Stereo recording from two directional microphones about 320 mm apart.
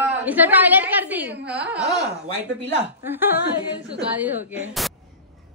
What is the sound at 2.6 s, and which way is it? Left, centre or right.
Speech, right.